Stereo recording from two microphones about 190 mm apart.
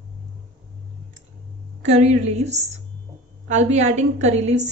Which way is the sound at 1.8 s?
35° right (ahead or behind).